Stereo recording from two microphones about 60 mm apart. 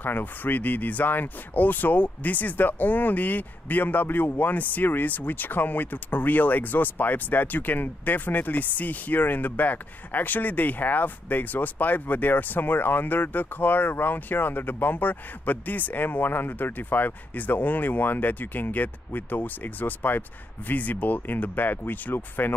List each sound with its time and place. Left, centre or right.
0.0 s speech: left